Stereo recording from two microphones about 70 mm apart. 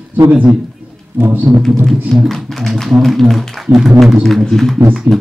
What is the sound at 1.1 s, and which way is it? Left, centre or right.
Speech, right.